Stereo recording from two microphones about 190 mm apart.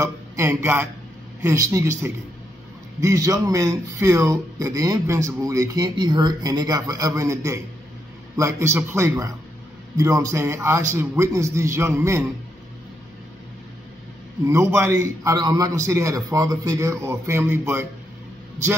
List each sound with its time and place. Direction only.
0.0 s speech: 15° right (ahead or behind)
14.4 s speech: 15° right (ahead or behind)